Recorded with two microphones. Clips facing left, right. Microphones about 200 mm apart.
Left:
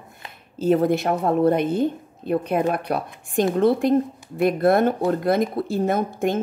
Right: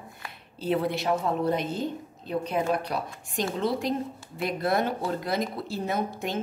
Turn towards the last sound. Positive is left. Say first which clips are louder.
# left 7 dB
turn(degrees=50)  # may be behind; listen again after turning